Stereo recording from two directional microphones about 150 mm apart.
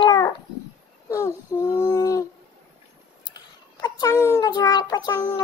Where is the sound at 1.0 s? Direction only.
20° left (ahead or behind).